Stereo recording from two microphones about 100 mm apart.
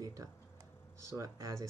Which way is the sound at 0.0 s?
35° right (ahead or behind).